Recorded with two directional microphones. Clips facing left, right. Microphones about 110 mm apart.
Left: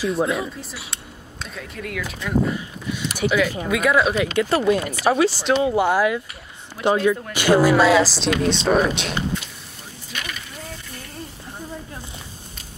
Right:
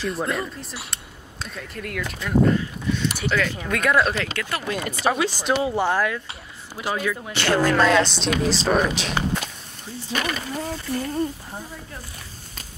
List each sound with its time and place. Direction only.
0.0 s speech: centre (ahead or behind)
2.5 s a sound: 10° left (ahead or behind)
3.2 s speech: 10° left (ahead or behind)
4.4 s speech: 30° left (ahead or behind)
4.6 s speech: 5° left (ahead or behind)
7.3 s speech: 10° left (ahead or behind)
10.1 s a sound: 40° right (ahead or behind)